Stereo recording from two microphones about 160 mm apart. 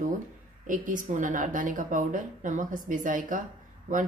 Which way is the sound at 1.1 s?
55° right (ahead or behind).